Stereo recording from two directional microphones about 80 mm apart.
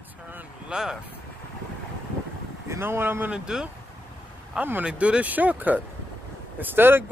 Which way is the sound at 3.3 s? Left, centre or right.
Centre.